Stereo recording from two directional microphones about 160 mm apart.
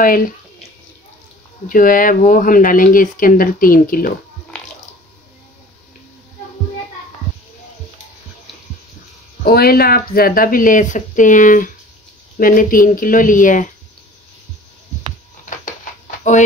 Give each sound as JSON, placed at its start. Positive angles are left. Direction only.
{"t": 0.0, "sound": "speech", "side_deg": 60}
{"t": 1.7, "sound": "speech", "side_deg": 60}
{"t": 9.4, "sound": "speech", "side_deg": 75}
{"t": 15.6, "sound": "a sound", "side_deg": 50}